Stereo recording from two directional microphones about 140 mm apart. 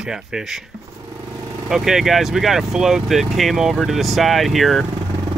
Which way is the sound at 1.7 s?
Centre (ahead or behind).